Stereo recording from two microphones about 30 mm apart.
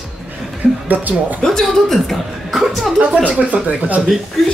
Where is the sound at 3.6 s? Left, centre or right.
Right.